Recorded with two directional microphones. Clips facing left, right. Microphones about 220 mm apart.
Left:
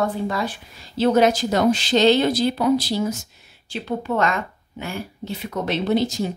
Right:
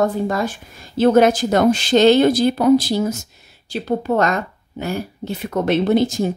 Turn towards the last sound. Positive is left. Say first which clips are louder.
# right 4 dB
turn(degrees=-50)  # may be behind; listen again after turning